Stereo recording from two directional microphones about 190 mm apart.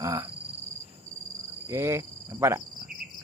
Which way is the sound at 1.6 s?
15° right (ahead or behind).